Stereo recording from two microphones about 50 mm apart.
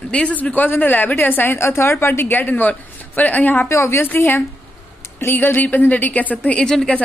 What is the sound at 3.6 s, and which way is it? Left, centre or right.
Speech, left.